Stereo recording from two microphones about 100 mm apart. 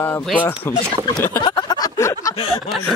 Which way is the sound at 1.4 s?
40° left (ahead or behind).